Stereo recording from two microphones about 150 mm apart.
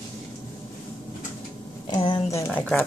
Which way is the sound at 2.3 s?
20° left (ahead or behind).